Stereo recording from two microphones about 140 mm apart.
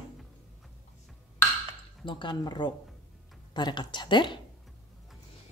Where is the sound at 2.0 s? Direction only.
35° left (ahead or behind).